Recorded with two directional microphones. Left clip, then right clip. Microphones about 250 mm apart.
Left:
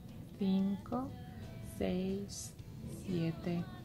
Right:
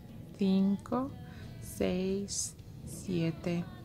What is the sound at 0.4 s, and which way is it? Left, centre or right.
Speech, right.